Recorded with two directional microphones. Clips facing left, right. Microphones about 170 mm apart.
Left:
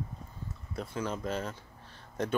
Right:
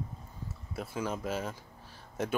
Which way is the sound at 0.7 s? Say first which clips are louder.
Even; 5° right (ahead or behind).